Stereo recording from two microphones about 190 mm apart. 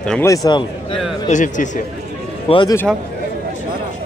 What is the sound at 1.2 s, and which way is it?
Speech, 40° left (ahead or behind).